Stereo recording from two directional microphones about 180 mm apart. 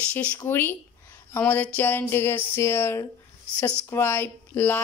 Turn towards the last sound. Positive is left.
turn(degrees=10)  # may be behind; listen again after turning